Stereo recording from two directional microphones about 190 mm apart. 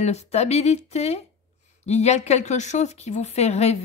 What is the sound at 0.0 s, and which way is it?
Speech, 35° left (ahead or behind).